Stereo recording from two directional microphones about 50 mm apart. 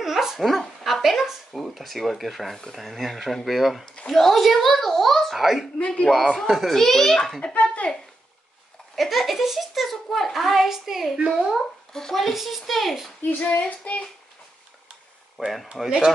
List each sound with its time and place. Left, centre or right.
0.0 s a child's voice: centre
3.8 s speech: centre
4.1 s a child's voice: centre
5.9 s speech: centre
6.4 s speech: centre
6.7 s a child's voice: centre
7.5 s a sound: left
8.9 s a child's voice: centre
11.1 s speech: centre
11.9 s speech: centre
12.2 s a child's voice: centre
13.5 s child singing: left
15.3 s speech: centre
15.7 s speech: centre